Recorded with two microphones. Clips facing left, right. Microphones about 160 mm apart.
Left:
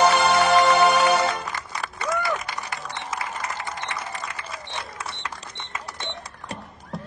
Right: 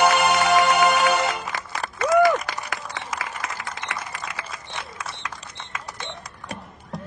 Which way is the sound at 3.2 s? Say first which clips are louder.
Left 1 dB; 90° right.